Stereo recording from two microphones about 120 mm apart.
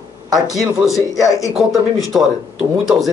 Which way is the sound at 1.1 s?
30° left (ahead or behind).